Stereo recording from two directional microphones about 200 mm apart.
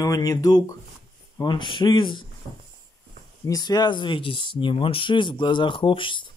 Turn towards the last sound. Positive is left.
turn(degrees=25)  # may be behind; listen again after turning